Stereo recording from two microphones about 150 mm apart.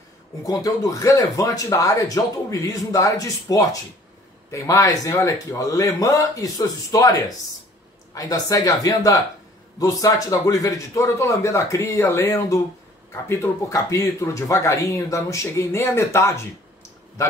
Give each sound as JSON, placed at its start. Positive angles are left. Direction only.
{"t": 0.5, "sound": "speech", "side_deg": 25}